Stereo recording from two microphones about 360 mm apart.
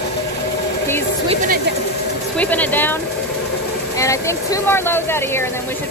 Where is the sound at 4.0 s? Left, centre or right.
Centre.